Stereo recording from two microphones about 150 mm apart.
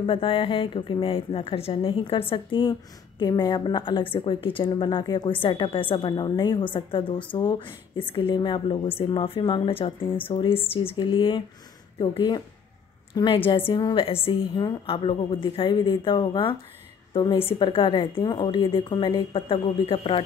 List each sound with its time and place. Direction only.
0.0 s a woman's voice: 35° left (ahead or behind)